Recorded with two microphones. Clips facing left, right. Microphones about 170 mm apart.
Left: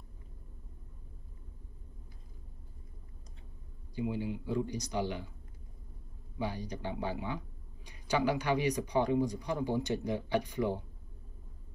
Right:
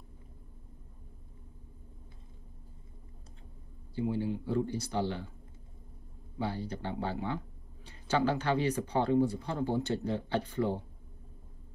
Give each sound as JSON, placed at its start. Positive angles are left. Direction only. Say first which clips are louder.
{"t": 3.9, "sound": "speech", "louder": "right 3 dB", "side_deg": 15}
{"t": 6.4, "sound": "speech", "louder": "right 1 dB", "side_deg": 15}